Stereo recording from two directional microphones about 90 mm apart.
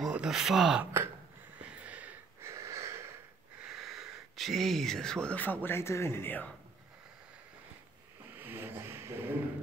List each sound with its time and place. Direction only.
0.0 s speech: 5° right (ahead or behind)
1.6 s a sound: 15° right (ahead or behind)
2.4 s wheeze: 35° right (ahead or behind)
3.6 s speech: centre (ahead or behind); by 6.5 s 20° left (ahead or behind)
8.4 s vehicle: 25° right (ahead or behind)